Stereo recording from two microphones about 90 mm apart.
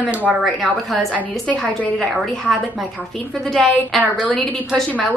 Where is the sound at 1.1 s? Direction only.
15° left (ahead or behind).